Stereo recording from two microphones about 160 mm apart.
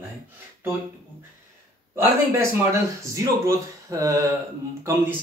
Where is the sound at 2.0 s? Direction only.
15° right (ahead or behind).